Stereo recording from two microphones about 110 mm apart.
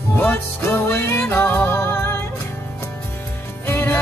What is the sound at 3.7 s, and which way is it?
Music, 20° left (ahead or behind).